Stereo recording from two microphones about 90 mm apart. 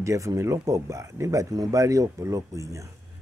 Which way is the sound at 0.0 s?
35° right (ahead or behind).